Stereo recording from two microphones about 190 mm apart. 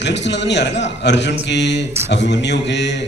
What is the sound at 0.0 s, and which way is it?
A man's voice, 65° left (ahead or behind).